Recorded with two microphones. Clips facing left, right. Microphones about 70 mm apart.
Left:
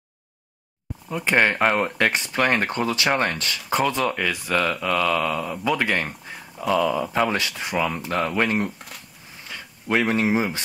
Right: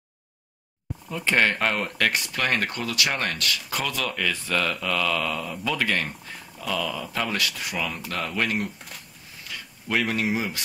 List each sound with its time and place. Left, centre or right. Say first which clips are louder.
1.0 s speech: left 3 dB; centre
8.7 s speech: left 2 dB; centre
9.5 s speech: left 4 dB; left